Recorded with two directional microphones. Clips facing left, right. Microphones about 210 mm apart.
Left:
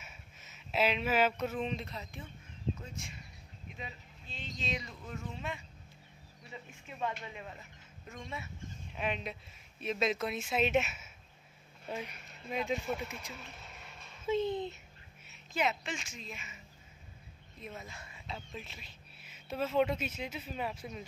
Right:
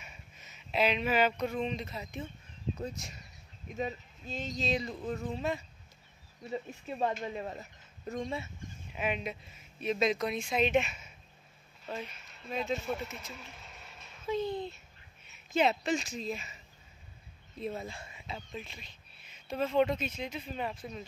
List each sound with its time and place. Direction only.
0.0 s speech: centre (ahead or behind)
2.0 s speech: 20° right (ahead or behind)
2.8 s speech: 40° right (ahead or behind)
8.9 s speech: 5° right (ahead or behind)
14.2 s speech: 25° left (ahead or behind)
15.5 s speech: 35° right (ahead or behind)
17.6 s speech: 30° right (ahead or behind)
18.2 s speech: centre (ahead or behind)